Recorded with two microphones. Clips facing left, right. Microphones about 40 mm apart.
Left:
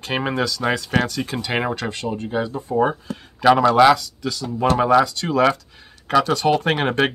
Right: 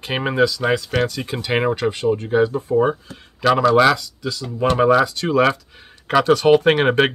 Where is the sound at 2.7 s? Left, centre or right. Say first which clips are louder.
Even; centre.